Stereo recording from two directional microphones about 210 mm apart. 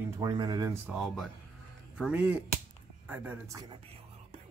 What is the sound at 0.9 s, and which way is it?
Speech, centre (ahead or behind).